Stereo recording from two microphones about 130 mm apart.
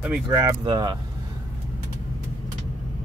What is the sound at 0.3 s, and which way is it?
Speech, 20° right (ahead or behind).